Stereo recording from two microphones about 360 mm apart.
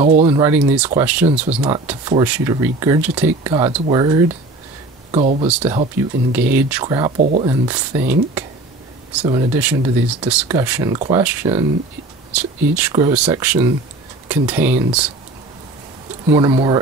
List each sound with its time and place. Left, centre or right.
0.0 s speech: centre
1.2 s speech: centre
16.3 s speech: centre